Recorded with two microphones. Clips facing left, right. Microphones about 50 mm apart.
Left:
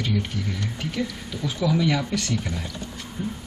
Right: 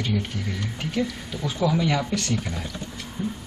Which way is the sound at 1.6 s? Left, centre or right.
Centre.